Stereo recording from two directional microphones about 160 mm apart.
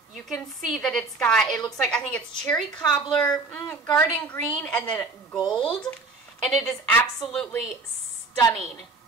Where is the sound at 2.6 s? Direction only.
25° left (ahead or behind).